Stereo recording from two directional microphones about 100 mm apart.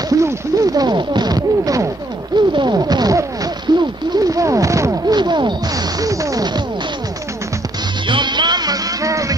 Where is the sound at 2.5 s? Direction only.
45° right (ahead or behind).